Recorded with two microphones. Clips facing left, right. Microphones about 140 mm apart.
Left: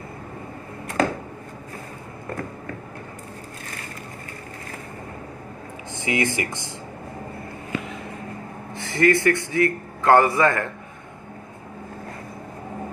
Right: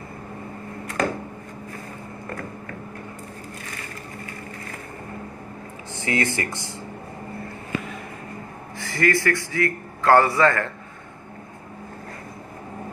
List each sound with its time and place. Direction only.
6.0 s speech: 15° left (ahead or behind)
8.7 s a man's voice: 20° left (ahead or behind)